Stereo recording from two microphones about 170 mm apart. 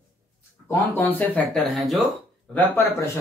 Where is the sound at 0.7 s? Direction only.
10° left (ahead or behind).